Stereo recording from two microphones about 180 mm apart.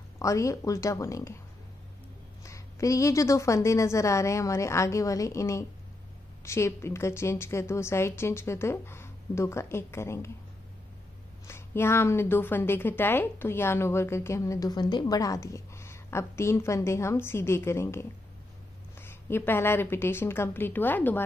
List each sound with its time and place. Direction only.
0.2 s a woman's voice: 15° left (ahead or behind)
2.4 s a woman's voice: 15° left (ahead or behind)
11.4 s a woman's voice: 15° left (ahead or behind)